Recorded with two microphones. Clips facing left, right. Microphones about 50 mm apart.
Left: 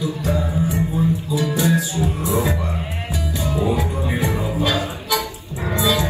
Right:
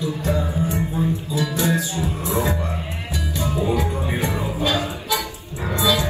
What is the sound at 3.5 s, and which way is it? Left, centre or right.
Music, left.